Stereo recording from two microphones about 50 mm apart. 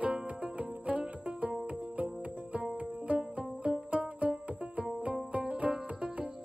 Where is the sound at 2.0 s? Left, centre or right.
Right.